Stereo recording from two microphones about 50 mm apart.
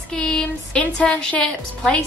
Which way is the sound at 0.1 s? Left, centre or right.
Centre.